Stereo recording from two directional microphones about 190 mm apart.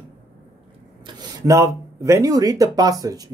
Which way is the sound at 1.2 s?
15° right (ahead or behind).